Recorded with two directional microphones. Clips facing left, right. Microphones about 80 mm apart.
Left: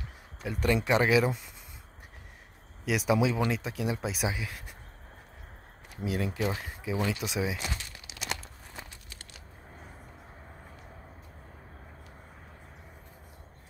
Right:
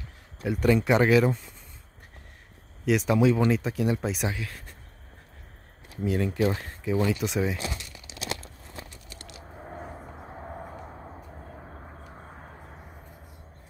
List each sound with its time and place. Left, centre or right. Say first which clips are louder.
0.4 s speech: right 5 dB; centre
2.8 s speech: right 4 dB; centre
5.9 s speech: right 6 dB; centre
8.1 s a sound: right 5 dB; right
9.7 s vehicle: right 10 dB; right